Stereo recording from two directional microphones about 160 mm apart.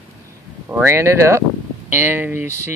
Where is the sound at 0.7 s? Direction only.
15° right (ahead or behind).